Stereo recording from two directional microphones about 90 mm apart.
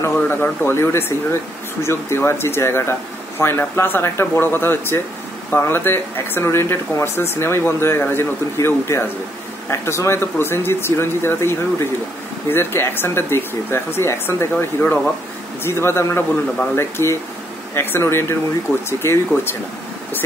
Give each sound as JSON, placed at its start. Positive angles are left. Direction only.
{"t": 0.0, "sound": "speech", "side_deg": 25}